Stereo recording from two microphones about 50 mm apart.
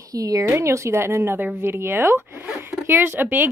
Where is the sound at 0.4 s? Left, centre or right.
Right.